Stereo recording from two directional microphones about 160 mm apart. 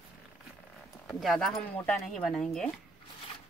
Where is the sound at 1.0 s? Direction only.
Centre (ahead or behind).